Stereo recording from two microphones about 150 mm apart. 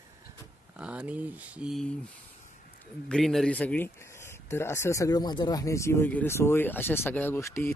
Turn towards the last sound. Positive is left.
turn(degrees=15)  # may be behind; listen again after turning